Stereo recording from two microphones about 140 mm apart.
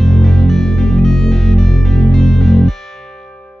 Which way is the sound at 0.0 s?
Centre (ahead or behind).